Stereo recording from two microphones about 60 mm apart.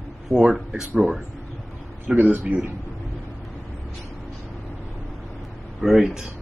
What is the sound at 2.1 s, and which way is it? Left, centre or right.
Speech, right.